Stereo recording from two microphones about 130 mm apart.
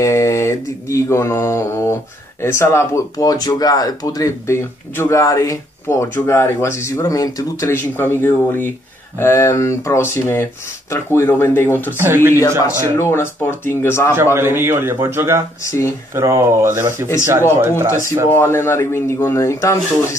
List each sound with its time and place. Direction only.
0.0 s speech: 25° left (ahead or behind)
12.0 s a man's voice: 20° right (ahead or behind)
12.9 s speech: 20° left (ahead or behind)
14.1 s a man's voice: 20° right (ahead or behind)
15.6 s speech: 25° left (ahead or behind)
16.1 s a man's voice: 20° right (ahead or behind)
18.3 s speech: 20° left (ahead or behind)